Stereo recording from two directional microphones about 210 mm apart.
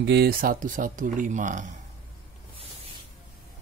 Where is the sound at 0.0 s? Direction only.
50° right (ahead or behind); by 1.8 s 35° right (ahead or behind).